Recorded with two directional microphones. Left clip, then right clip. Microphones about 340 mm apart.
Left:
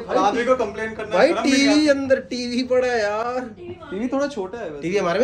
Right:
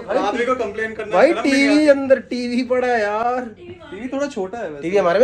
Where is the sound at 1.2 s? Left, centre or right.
Centre.